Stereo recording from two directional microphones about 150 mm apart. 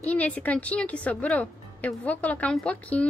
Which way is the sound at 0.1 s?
10° left (ahead or behind).